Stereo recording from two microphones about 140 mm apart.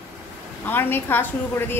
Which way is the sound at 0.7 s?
15° left (ahead or behind).